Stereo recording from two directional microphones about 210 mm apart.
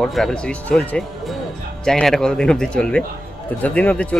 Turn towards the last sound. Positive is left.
turn(degrees=5)  # may be behind; listen again after turning